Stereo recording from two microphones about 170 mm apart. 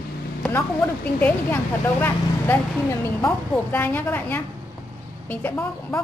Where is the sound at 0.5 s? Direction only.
10° left (ahead or behind).